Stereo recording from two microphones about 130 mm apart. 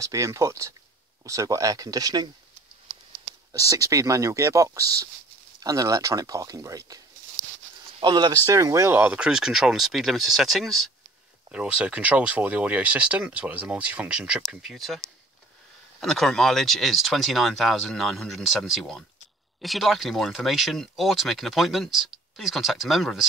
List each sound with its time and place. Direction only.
0.0 s speech: 25° right (ahead or behind)
3.5 s speech: 25° right (ahead or behind)
8.0 s speech: 35° right (ahead or behind); by 23.2 s centre (ahead or behind)